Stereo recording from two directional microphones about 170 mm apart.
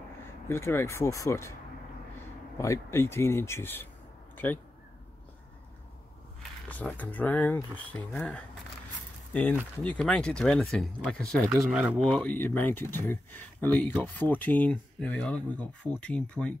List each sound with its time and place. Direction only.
0.5 s speech: 15° left (ahead or behind)
2.5 s speech: 15° left (ahead or behind)
6.7 s speech: 10° left (ahead or behind)
11.7 s speech: 10° right (ahead or behind)
12.0 s speech: 5° left (ahead or behind)